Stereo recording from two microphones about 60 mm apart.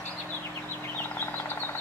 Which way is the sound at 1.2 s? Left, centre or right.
Left.